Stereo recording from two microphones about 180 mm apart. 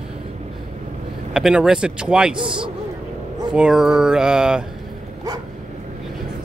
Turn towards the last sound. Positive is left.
turn(degrees=-5)  # may be behind; listen again after turning